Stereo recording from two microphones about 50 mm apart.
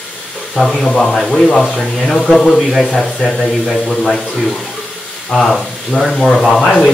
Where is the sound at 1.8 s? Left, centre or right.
Centre.